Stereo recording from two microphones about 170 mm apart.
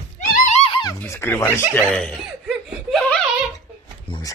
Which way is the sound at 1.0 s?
15° left (ahead or behind).